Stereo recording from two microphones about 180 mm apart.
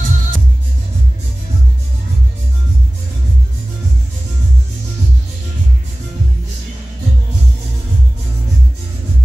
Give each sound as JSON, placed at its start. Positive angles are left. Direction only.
{"t": 0.0, "sound": "music", "side_deg": -45}